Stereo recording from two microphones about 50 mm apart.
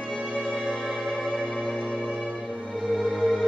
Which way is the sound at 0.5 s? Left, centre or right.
Centre.